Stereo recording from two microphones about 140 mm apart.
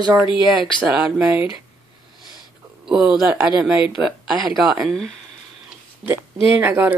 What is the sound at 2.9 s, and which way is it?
Speech, 5° right (ahead or behind).